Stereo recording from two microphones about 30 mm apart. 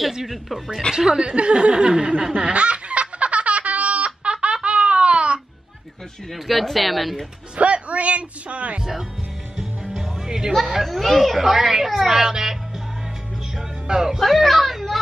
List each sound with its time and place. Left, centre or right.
0.8 s a woman's voice: left
1.2 s a sound: right
4.6 s laughter: right
6.3 s speech: centre
7.5 s speech: right
9.9 s music: centre
10.7 s speech: centre
13.6 s music: right
14.2 s a child's voice: centre